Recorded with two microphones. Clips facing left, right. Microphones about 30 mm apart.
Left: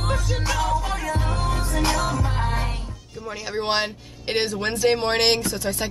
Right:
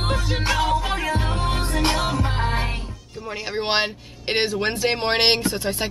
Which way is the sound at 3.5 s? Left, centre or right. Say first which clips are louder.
Right 1 dB; right.